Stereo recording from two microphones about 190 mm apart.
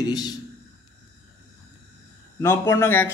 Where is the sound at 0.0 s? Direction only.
20° left (ahead or behind).